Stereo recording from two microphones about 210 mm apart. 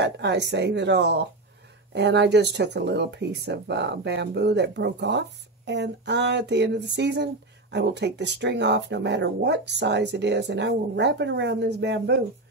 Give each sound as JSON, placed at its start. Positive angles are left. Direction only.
{"t": 0.0, "sound": "speech", "side_deg": -55}